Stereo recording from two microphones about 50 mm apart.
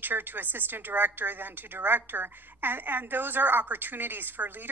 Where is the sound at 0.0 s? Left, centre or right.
Right.